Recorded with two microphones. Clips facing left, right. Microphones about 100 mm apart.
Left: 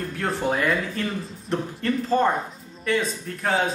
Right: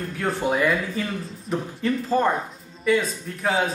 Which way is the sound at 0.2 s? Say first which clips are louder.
Right 2 dB; 5° right (ahead or behind).